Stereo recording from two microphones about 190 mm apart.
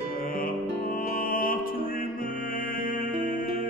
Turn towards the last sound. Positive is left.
turn(degrees=45)  # may be behind; listen again after turning